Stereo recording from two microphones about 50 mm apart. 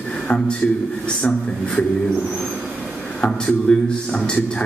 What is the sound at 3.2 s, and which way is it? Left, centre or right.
A man's voice, centre.